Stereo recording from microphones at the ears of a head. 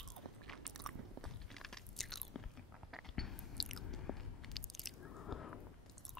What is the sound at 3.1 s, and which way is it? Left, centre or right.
Biting, left.